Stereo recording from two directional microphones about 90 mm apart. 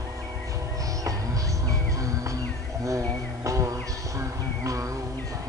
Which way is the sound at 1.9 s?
40° right (ahead or behind).